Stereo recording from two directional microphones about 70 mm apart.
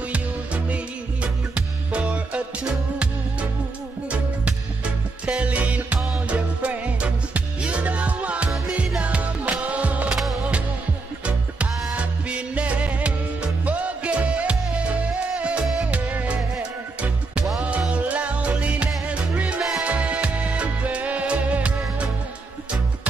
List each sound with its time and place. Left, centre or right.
1.2 s music: centre
5.2 s music: centre
11.2 s music: centre